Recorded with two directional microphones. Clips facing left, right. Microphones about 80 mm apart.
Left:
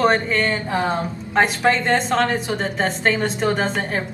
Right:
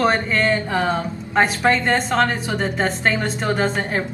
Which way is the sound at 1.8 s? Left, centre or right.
Centre.